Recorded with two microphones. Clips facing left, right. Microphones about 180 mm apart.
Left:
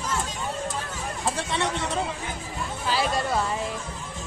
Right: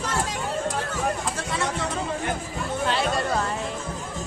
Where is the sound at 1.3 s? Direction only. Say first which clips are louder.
Left 1 dB; 30° left (ahead or behind).